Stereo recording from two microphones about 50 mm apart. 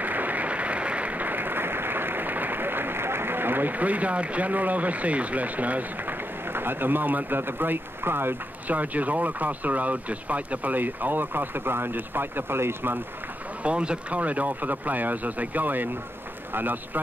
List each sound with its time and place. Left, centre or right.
0.0 s applause: right
6.5 s speech: right
8.6 s speech: right
13.6 s speech: right